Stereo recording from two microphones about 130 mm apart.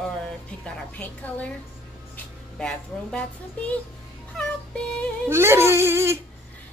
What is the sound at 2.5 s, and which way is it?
A woman's voice, 5° left (ahead or behind).